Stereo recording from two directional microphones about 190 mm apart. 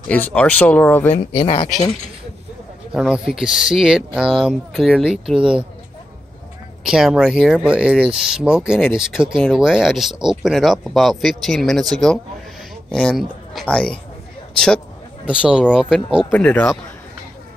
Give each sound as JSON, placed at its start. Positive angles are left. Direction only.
{"t": 0.1, "sound": "speech", "side_deg": 5}
{"t": 1.1, "sound": "speech", "side_deg": 30}
{"t": 2.9, "sound": "speech", "side_deg": -5}
{"t": 6.9, "sound": "a man's voice", "side_deg": -5}
{"t": 16.3, "sound": "speech", "side_deg": 5}